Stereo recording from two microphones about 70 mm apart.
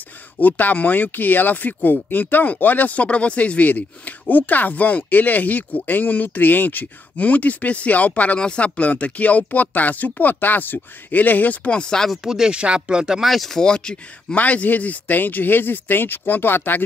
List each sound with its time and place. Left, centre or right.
0.4 s speech: left; by 12.2 s centre
12.2 s speech: centre; by 16.8 s left